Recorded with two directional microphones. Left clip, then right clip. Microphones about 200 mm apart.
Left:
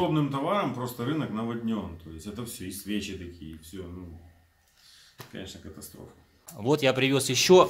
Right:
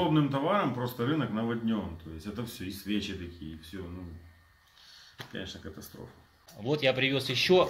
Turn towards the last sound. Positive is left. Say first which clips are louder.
# left 5 dB
turn(degrees=35)  # may be behind; listen again after turning